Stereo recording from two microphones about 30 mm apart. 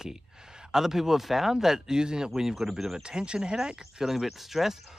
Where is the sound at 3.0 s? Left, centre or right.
Right.